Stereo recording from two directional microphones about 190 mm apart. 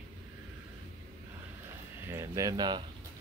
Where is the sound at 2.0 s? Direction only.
15° right (ahead or behind).